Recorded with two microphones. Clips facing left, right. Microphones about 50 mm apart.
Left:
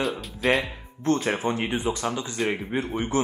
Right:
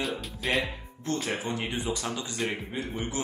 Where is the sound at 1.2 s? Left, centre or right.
Left.